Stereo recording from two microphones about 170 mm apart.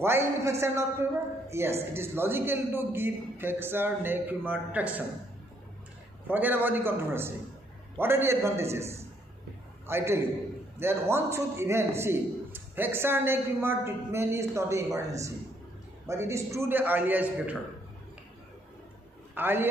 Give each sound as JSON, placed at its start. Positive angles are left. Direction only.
{"t": 0.0, "sound": "a man's voice", "side_deg": -15}
{"t": 6.2, "sound": "a man's voice", "side_deg": -10}
{"t": 19.3, "sound": "a man's voice", "side_deg": -10}